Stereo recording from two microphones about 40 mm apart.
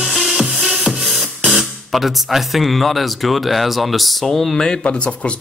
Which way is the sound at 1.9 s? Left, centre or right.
Centre.